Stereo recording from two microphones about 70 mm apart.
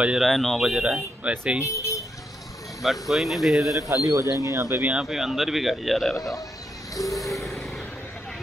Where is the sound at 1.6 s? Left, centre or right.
Left.